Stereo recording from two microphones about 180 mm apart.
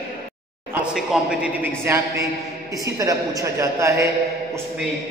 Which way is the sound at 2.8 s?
20° right (ahead or behind).